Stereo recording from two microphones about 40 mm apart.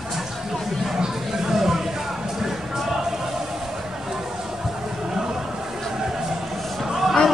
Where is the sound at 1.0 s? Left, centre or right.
Centre.